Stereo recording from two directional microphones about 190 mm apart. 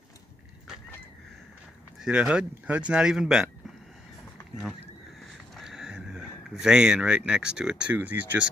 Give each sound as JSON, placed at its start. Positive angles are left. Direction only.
{"t": 2.0, "sound": "speech", "side_deg": -5}
{"t": 5.6, "sound": "speech", "side_deg": 0}